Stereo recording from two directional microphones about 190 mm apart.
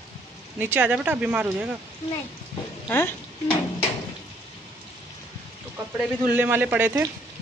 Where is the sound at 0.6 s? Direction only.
10° right (ahead or behind).